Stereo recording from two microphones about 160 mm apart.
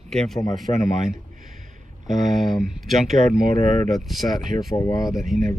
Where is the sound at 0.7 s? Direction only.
35° left (ahead or behind).